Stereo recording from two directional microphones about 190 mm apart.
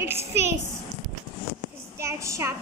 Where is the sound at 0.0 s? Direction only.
15° right (ahead or behind).